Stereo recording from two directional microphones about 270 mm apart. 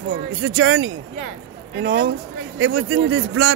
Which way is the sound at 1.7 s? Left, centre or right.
Right.